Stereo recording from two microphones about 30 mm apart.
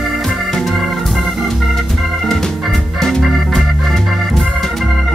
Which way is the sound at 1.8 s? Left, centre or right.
Centre.